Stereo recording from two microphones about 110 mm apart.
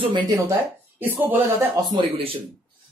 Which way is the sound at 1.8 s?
55° right (ahead or behind).